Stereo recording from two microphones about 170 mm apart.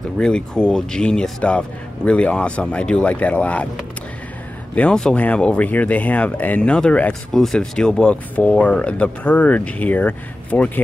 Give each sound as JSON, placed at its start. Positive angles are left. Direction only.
{"t": 0.2, "sound": "speech", "side_deg": 5}
{"t": 4.7, "sound": "speech", "side_deg": 5}